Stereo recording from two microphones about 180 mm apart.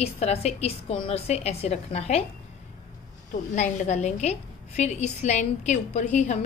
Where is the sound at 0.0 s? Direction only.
35° left (ahead or behind).